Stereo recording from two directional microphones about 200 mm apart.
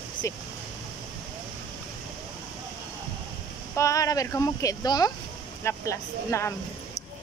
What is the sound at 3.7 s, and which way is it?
Speech, 15° left (ahead or behind).